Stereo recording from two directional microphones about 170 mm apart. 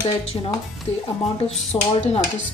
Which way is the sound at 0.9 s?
40° left (ahead or behind).